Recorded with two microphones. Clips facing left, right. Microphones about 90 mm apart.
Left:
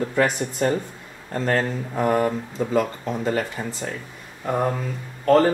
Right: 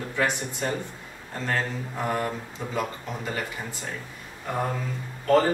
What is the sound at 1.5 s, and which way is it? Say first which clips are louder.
Speech: left 5 dB; 50° left (ahead or behind).